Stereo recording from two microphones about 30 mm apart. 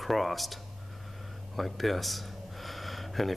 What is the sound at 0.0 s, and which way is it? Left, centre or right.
Speech, centre.